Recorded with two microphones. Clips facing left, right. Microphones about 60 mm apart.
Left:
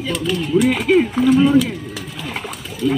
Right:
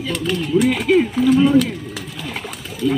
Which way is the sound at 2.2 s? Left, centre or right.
Left.